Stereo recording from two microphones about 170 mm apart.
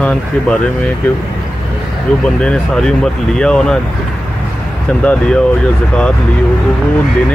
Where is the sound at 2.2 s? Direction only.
5° left (ahead or behind).